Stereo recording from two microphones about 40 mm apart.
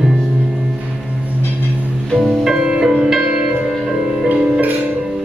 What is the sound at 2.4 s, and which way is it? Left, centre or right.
Music, centre.